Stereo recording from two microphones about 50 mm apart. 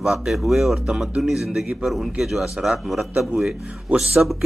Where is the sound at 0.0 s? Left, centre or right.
Centre.